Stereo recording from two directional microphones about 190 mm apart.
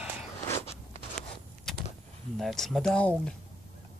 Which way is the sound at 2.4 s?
Centre (ahead or behind).